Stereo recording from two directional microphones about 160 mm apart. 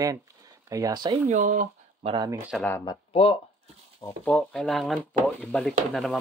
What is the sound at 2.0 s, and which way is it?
Speech, 30° right (ahead or behind).